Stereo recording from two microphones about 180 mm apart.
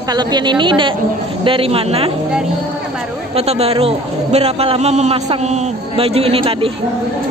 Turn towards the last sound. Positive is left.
turn(degrees=-30)  # may be behind; listen again after turning